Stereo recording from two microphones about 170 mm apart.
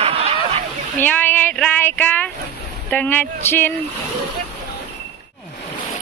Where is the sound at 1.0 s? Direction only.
10° left (ahead or behind).